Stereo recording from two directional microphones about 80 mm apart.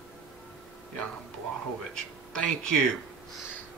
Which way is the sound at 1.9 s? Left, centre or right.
Centre.